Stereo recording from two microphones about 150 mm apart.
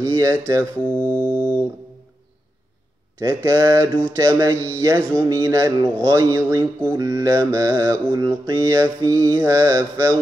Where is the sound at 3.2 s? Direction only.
20° right (ahead or behind).